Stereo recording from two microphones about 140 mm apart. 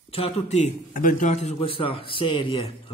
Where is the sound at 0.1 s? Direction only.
50° left (ahead or behind).